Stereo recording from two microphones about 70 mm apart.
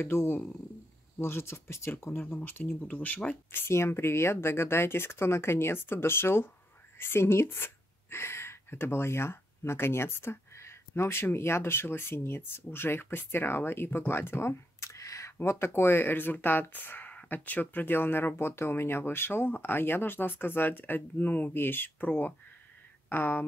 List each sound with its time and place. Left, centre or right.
0.0 s speech: left
3.5 s a woman's voice: left
15.3 s speech: left